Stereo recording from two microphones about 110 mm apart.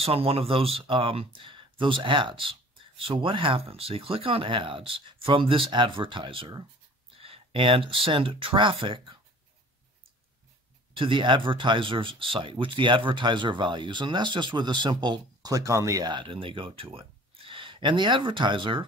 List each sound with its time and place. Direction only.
0.0 s speech: 60° right (ahead or behind)
7.2 s speech: 60° right (ahead or behind)
11.0 s speech: 50° right (ahead or behind)